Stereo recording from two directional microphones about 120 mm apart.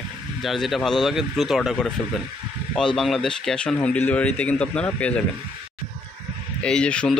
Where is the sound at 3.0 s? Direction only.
Centre (ahead or behind).